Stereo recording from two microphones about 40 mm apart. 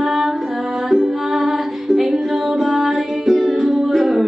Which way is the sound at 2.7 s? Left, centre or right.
Centre.